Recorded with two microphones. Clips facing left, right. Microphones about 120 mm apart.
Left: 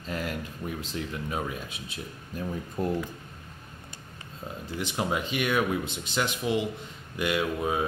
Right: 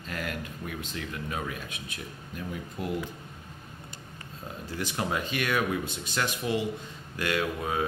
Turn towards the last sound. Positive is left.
turn(degrees=20)  # may be behind; listen again after turning